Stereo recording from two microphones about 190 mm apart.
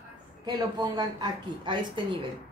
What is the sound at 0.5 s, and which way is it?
Speech, 20° right (ahead or behind).